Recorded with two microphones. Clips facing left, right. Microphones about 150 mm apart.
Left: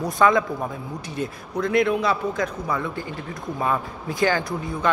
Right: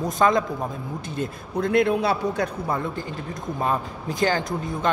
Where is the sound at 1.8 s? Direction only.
65° right (ahead or behind).